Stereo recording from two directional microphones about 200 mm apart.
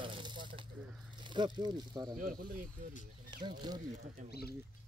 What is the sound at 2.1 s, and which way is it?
Speech, 45° right (ahead or behind).